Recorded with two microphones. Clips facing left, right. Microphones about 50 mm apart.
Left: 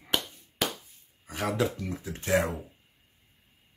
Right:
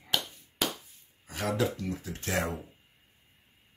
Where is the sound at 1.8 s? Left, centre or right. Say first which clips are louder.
Even; left.